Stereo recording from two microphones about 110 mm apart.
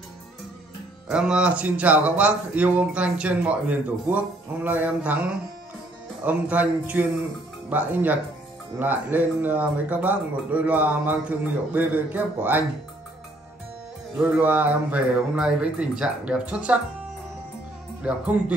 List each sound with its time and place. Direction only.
1.0 s speech: 10° right (ahead or behind)
6.2 s speech: 15° right (ahead or behind)
14.4 s speech: 15° right (ahead or behind)
18.0 s speech: 10° right (ahead or behind)